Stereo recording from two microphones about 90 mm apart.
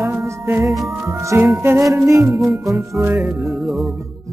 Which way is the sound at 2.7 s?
35° right (ahead or behind).